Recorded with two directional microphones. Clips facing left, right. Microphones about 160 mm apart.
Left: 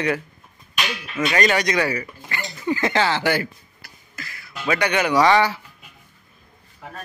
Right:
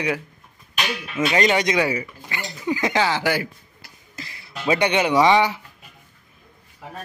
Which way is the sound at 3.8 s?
25° right (ahead or behind).